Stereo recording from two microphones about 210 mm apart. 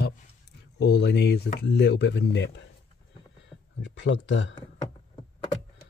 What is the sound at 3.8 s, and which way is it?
Speech, 60° left (ahead or behind).